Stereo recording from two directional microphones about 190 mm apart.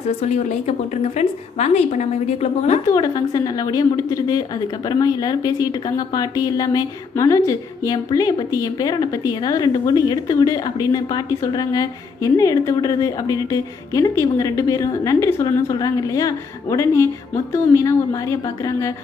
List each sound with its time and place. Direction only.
0.5 s a woman's voice: 35° left (ahead or behind)
2.9 s a woman's voice: 20° left (ahead or behind)